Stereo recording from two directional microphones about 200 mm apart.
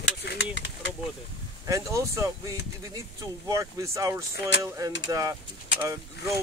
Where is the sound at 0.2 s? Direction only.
60° left (ahead or behind).